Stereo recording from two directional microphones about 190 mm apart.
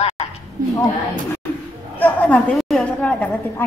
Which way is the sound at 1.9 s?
10° left (ahead or behind).